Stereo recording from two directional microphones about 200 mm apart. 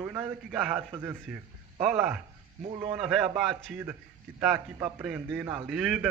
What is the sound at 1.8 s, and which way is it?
Speech, centre (ahead or behind).